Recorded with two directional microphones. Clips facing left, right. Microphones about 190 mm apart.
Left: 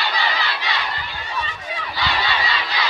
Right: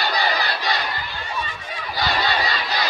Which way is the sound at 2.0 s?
40° right (ahead or behind).